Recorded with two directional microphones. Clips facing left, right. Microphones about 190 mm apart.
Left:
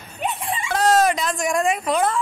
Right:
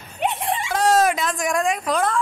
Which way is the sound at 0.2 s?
70° right (ahead or behind).